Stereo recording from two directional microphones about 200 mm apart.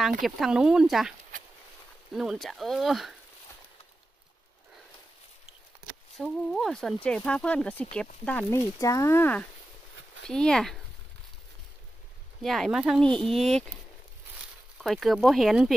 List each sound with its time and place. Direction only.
0.2 s speech: centre (ahead or behind)
2.1 s speech: centre (ahead or behind)
6.1 s speech: centre (ahead or behind)
12.4 s speech: centre (ahead or behind)
14.8 s speech: centre (ahead or behind)